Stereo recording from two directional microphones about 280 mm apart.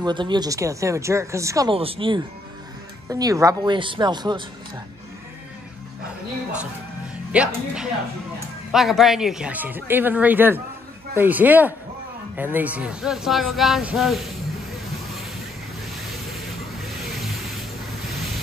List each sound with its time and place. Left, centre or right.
0.0 s speech: centre
7.3 s speech: centre
16.3 s a sound: centre